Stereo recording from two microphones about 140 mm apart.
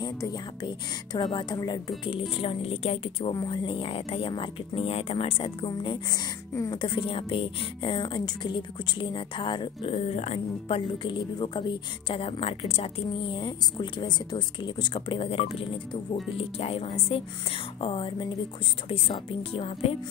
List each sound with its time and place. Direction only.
0.0 s speech: 30° left (ahead or behind)
6.8 s speech: 35° left (ahead or behind)